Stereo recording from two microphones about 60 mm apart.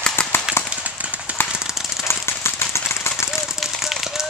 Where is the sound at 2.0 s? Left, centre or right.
Left.